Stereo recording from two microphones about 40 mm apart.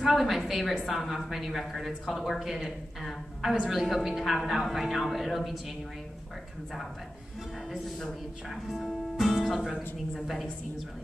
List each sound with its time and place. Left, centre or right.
0.0 s speech: centre
8.0 s speech: centre
9.2 s music: centre
10.1 s speech: centre